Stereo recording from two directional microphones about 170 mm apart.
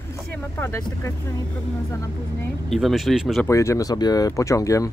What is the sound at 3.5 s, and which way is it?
Speech, 20° left (ahead or behind).